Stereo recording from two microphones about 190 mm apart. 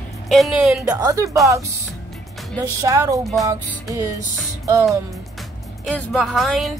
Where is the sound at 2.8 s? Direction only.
15° right (ahead or behind).